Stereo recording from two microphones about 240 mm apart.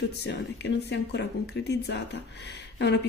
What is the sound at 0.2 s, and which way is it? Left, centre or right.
Speech, left.